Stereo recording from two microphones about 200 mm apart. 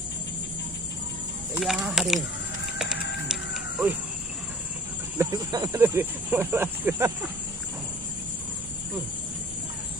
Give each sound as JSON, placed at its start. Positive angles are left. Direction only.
{"t": 1.6, "sound": "speech", "side_deg": 0}
{"t": 2.8, "sound": "music", "side_deg": -5}
{"t": 5.1, "sound": "a sound", "side_deg": -15}
{"t": 5.5, "sound": "speech", "side_deg": -15}